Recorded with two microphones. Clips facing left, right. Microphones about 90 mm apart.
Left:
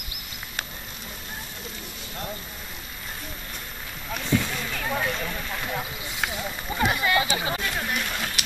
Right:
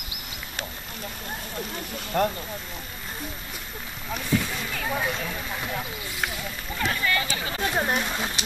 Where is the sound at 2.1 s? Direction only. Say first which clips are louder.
Right 13 dB; 65° right (ahead or behind).